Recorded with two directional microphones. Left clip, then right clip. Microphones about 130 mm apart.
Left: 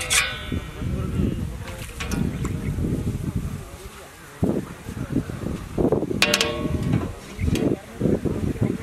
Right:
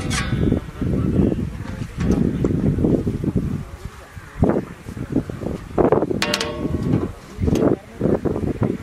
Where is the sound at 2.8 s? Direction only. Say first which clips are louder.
Right 10 dB; 70° right (ahead or behind).